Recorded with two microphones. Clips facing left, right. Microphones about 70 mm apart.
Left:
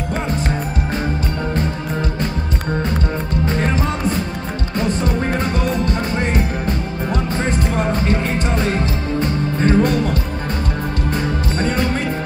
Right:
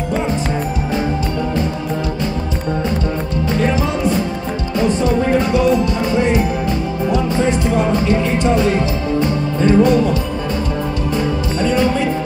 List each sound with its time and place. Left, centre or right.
5.0 s music: left
9.6 s music: left
11.6 s music: left